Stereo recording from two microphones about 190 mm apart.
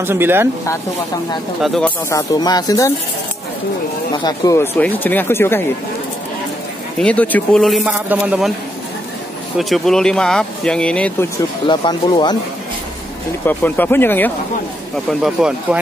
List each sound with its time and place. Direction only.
0.0 s speech: 10° right (ahead or behind)
1.6 s speech: 5° left (ahead or behind); by 2.9 s 20° left (ahead or behind)
4.2 s speech: 20° left (ahead or behind)
7.0 s speech: 5° left (ahead or behind)
9.6 s speech: centre (ahead or behind)
11.6 s speech: 25° left (ahead or behind)
13.5 s speech: 10° left (ahead or behind)
15.2 s speech: 5° right (ahead or behind)